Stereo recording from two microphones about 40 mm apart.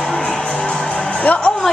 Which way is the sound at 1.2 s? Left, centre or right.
Left.